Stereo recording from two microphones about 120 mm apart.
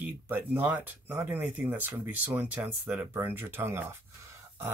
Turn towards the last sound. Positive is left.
turn(degrees=-20)  # may be behind; listen again after turning